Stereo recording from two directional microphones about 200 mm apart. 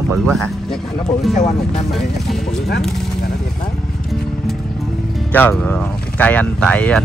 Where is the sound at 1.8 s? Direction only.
Centre (ahead or behind).